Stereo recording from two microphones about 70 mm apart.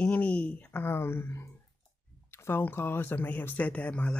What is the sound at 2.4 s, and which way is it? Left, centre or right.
Speech, left.